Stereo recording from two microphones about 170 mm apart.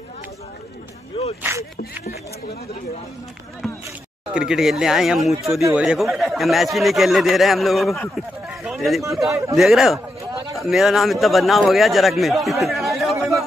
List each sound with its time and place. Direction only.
1.4 s speech: 15° right (ahead or behind)
3.6 s a sound: centre (ahead or behind)
4.3 s a man's voice: 5° right (ahead or behind)